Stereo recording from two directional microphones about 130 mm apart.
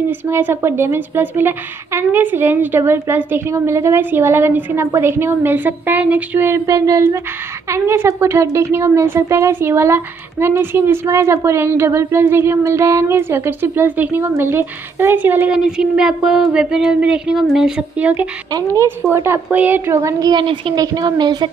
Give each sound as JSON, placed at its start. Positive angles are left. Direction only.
{"t": 0.3, "sound": "a woman's voice", "side_deg": -20}
{"t": 19.1, "sound": "a woman's voice", "side_deg": -20}